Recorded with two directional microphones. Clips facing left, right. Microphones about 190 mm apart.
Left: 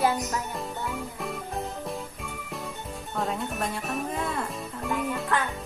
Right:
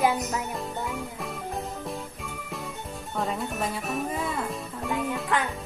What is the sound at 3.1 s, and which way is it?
Speech, centre (ahead or behind).